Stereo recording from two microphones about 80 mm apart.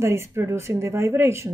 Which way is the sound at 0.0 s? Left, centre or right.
Right.